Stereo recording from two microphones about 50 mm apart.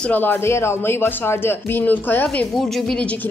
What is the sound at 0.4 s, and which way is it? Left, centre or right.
Speech, left.